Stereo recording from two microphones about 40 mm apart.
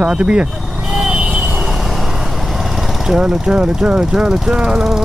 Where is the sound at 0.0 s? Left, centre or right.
Right.